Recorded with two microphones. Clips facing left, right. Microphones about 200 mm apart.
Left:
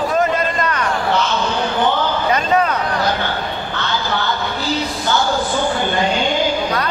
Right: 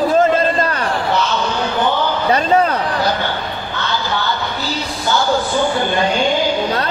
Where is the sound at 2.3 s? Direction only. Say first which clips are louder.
Right 3 dB; 30° right (ahead or behind).